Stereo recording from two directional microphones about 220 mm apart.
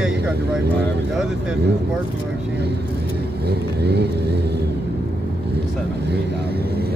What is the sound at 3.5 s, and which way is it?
Vehicle, 50° right (ahead or behind).